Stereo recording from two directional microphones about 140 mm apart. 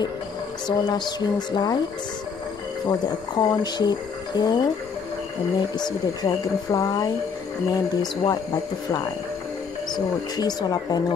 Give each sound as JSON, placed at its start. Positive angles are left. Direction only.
{"t": 0.7, "sound": "speech", "side_deg": 30}
{"t": 2.9, "sound": "speech", "side_deg": 30}
{"t": 9.9, "sound": "speech", "side_deg": 30}